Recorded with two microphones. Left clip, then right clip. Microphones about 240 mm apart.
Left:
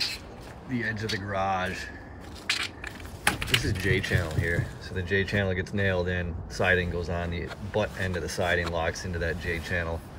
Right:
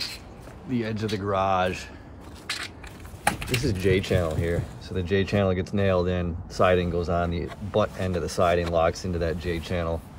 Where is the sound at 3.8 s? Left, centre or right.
Centre.